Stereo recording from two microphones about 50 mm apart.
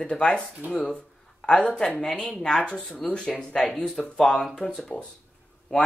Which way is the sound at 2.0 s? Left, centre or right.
Centre.